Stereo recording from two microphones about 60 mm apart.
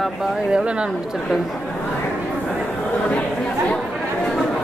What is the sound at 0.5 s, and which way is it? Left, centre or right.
Speech, centre.